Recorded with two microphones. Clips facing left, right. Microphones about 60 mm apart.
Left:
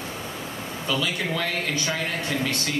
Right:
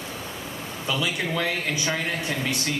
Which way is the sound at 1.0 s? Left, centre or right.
Centre.